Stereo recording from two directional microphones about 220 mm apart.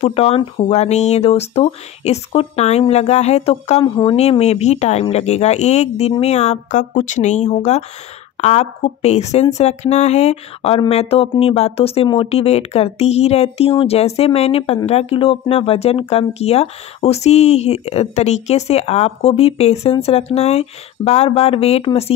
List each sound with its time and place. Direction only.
0.0 s speech: 25° left (ahead or behind)